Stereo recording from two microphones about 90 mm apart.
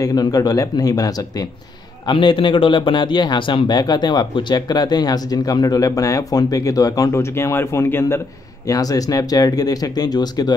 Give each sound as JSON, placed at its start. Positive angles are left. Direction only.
{"t": 0.0, "sound": "a man's voice", "side_deg": 45}
{"t": 2.0, "sound": "a man's voice", "side_deg": 70}
{"t": 8.6, "sound": "a man's voice", "side_deg": 40}